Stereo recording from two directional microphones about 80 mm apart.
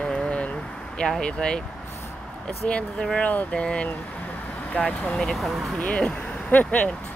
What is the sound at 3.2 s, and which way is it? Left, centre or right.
Speech, centre.